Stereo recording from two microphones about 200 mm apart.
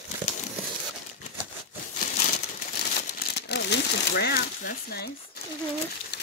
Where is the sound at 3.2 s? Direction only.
55° left (ahead or behind).